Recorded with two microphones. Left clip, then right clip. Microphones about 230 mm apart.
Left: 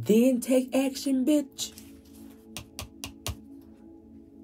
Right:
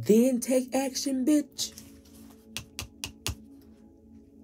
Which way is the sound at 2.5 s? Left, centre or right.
Centre.